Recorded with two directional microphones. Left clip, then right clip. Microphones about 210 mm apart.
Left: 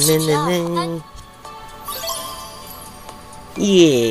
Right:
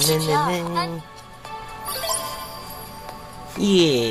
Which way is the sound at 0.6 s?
5° right (ahead or behind).